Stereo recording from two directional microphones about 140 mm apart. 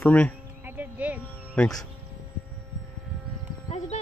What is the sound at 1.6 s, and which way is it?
Speech, 10° left (ahead or behind).